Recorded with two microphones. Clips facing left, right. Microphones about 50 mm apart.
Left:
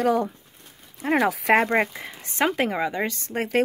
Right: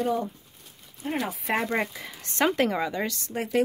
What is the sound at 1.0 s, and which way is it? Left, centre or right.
Speech, left.